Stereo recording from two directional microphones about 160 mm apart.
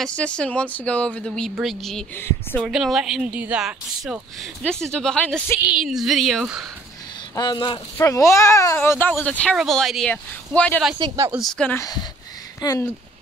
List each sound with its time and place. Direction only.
0.0 s speech: 5° left (ahead or behind)
2.1 s speech: 15° left (ahead or behind)
2.6 s speech: 5° right (ahead or behind)
7.3 s speech: 25° left (ahead or behind)
8.0 s speech: 20° left (ahead or behind)
11.0 s speech: 30° right (ahead or behind)
11.3 s speech: 5° left (ahead or behind)
11.8 s speech: 25° left (ahead or behind)